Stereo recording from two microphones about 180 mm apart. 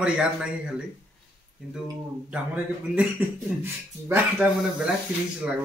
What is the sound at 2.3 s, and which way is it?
Speech, 10° right (ahead or behind).